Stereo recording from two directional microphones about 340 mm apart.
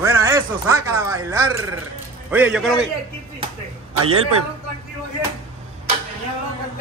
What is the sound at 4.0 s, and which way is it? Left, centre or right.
Speech, right.